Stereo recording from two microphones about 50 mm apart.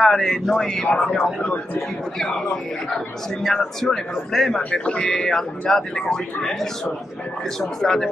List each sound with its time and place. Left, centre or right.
0.0 s speech: centre
0.9 s speech: centre
1.4 s speech: left
2.1 s speech: centre
3.4 s speech: centre
4.6 s speech: left